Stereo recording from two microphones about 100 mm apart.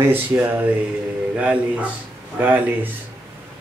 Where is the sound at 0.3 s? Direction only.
30° right (ahead or behind).